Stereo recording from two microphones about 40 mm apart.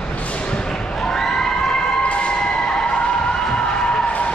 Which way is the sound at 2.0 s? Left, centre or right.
Left.